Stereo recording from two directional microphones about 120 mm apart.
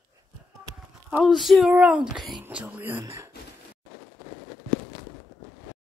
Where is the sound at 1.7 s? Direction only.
10° right (ahead or behind).